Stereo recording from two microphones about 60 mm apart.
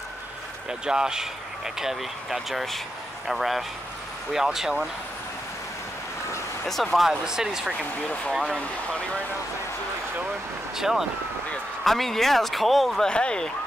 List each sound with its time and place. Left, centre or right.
0.7 s speech: centre
6.6 s speech: centre
7.1 s speech: centre
10.8 s speech: centre
11.8 s speech: centre
13.1 s speech: centre